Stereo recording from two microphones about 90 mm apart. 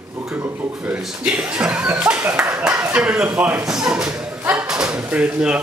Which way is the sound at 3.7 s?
5° right (ahead or behind).